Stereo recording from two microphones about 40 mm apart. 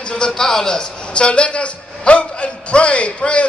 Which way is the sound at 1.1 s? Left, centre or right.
Left.